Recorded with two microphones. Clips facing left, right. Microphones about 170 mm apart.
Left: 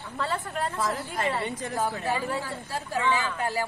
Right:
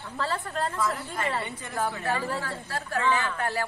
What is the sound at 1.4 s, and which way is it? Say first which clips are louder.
Speech: left 6 dB; 40° left (ahead or behind).